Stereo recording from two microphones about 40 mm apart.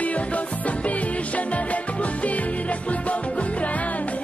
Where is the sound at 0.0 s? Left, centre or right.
Left.